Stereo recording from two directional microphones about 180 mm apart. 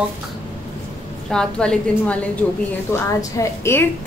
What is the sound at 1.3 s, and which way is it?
Speech, 5° left (ahead or behind).